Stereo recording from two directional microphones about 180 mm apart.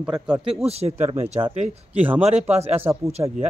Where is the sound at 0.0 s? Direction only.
5° right (ahead or behind).